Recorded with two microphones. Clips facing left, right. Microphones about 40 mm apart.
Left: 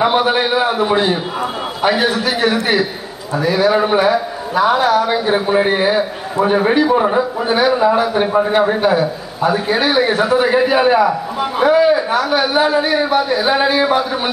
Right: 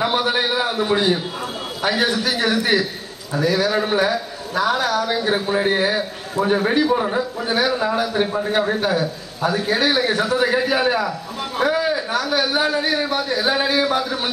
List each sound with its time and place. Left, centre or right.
0.0 s a man's voice: left